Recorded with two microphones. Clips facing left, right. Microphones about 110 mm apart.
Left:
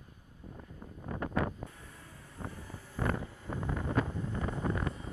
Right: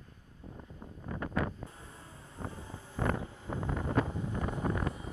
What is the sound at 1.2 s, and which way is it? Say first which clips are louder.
Wind noise: left 1 dB; 35° left (ahead or behind).